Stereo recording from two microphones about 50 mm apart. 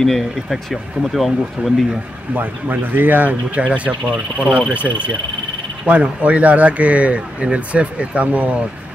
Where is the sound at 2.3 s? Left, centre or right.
Right.